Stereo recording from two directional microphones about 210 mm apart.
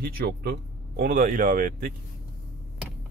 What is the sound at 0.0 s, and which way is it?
Speech, 45° right (ahead or behind).